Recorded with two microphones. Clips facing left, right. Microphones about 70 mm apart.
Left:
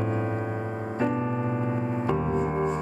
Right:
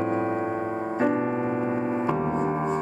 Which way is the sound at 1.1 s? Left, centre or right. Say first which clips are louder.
Right 3 dB; right.